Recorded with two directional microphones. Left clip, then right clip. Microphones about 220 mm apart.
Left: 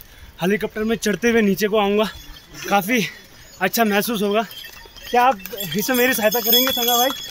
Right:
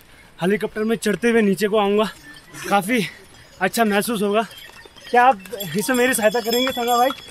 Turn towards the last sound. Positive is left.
turn(degrees=-15)  # may be behind; listen again after turning